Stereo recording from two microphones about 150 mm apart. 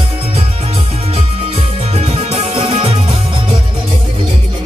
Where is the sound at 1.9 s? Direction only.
40° right (ahead or behind).